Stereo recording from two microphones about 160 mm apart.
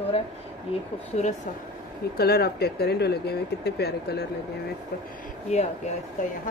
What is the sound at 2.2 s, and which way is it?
Speech, 80° left.